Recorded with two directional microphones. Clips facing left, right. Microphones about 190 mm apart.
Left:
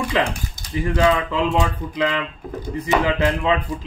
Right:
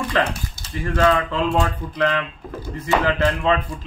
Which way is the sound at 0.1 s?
15° left (ahead or behind).